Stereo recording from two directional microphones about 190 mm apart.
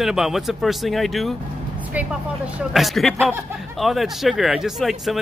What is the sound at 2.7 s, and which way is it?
Speech, centre (ahead or behind).